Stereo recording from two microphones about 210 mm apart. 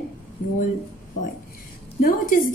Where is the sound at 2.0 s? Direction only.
40° left (ahead or behind).